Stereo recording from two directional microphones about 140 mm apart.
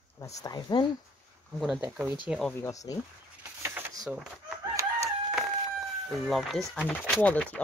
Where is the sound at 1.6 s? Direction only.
5° right (ahead or behind).